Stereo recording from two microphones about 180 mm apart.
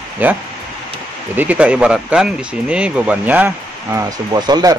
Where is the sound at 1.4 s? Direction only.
10° right (ahead or behind); by 4.7 s 25° right (ahead or behind).